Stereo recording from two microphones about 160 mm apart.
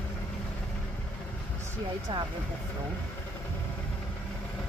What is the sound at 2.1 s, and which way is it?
Speech, 30° right (ahead or behind).